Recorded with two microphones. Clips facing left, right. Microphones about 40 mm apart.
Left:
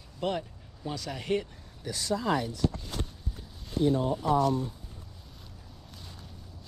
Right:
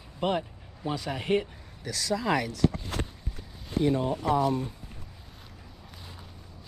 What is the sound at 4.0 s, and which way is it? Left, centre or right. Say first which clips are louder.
Speech: even; right.